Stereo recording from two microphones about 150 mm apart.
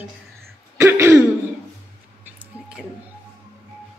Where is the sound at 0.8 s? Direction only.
15° right (ahead or behind).